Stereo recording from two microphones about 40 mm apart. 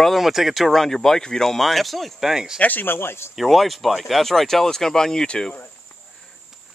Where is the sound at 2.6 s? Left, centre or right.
Left.